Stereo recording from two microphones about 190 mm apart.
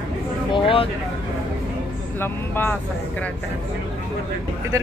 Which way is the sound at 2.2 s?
10° left (ahead or behind).